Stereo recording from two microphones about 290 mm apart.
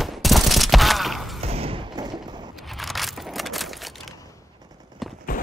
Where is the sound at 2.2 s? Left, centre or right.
Centre.